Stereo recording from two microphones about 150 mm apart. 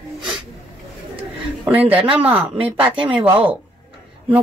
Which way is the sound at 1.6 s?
10° right (ahead or behind).